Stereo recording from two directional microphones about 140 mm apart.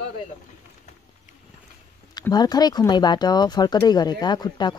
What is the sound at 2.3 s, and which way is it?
Speech, 30° left (ahead or behind).